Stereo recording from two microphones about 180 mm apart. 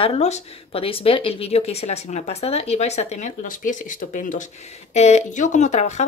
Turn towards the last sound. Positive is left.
turn(degrees=40)  # may be behind; listen again after turning